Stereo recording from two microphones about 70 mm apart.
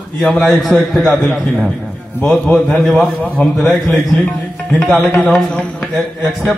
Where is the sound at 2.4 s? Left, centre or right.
Centre.